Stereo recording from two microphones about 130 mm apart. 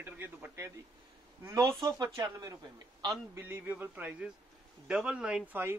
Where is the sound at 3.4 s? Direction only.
15° right (ahead or behind).